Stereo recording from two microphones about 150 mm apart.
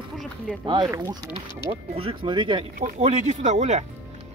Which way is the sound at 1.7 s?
40° right (ahead or behind).